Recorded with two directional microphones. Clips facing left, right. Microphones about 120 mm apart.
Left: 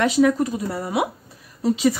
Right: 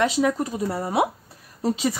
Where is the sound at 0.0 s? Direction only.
25° right (ahead or behind).